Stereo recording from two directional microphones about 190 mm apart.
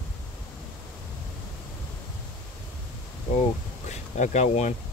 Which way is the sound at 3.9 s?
40° left (ahead or behind).